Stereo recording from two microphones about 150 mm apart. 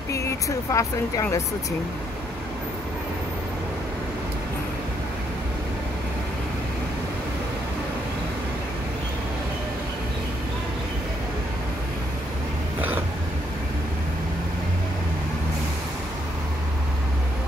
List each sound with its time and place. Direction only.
0.1 s speech: 20° left (ahead or behind)